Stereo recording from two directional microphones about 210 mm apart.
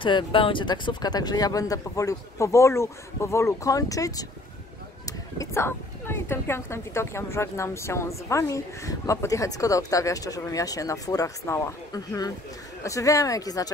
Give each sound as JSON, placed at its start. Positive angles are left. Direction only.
{"t": 0.0, "sound": "speech", "side_deg": 25}